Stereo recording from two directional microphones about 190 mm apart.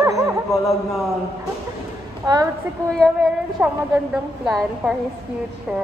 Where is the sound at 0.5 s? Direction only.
Centre (ahead or behind).